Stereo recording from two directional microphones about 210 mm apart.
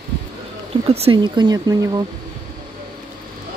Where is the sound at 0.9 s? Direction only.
25° right (ahead or behind).